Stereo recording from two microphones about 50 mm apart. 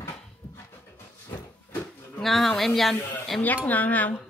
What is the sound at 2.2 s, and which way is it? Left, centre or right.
Speech, centre.